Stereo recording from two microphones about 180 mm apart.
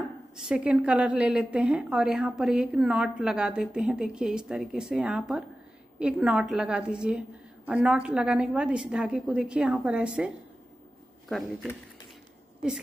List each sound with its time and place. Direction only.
0.4 s a woman's voice: 5° right (ahead or behind)